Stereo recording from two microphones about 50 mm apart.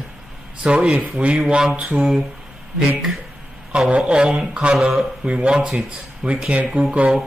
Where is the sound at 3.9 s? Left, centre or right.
Centre.